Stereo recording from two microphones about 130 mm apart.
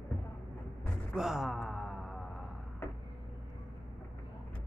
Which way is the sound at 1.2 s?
5° right (ahead or behind).